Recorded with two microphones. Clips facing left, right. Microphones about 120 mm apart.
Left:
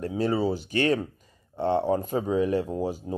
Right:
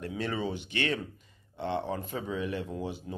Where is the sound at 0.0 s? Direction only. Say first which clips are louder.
Left 8 dB; 35° left (ahead or behind).